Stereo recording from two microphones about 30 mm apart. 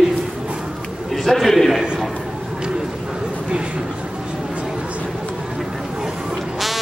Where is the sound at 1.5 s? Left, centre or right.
Centre.